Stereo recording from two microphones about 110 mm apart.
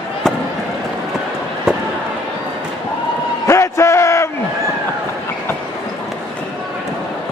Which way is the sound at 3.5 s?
25° left (ahead or behind).